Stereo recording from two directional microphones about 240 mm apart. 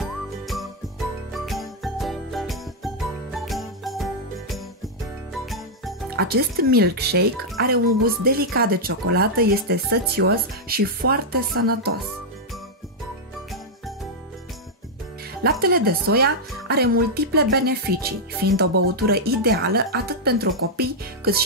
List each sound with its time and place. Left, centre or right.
0.0 s jingle: centre
5.3 s jingle bell: centre
6.1 s speech: right
15.6 s speech: right